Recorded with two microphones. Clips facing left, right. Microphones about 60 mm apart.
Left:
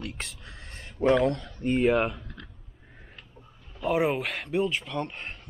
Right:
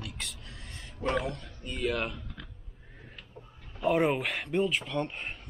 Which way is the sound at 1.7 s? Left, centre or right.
Left.